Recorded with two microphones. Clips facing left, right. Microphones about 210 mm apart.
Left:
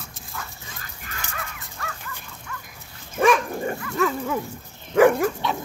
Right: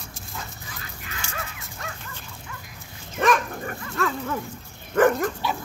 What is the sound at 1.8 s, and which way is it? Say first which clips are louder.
Dog: left 1 dB; 20° right (ahead or behind).